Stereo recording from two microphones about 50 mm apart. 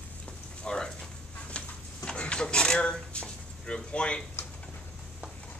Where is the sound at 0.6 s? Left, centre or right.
Centre.